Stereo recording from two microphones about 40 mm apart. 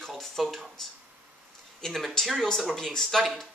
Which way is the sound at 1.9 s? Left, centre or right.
Centre.